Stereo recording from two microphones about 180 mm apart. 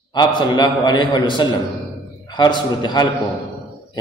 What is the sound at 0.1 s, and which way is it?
A man's voice, 25° left (ahead or behind).